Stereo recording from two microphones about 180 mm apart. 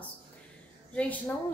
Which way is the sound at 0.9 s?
5° left (ahead or behind).